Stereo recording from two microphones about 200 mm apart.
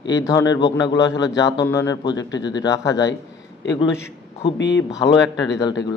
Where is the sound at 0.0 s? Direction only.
20° left (ahead or behind).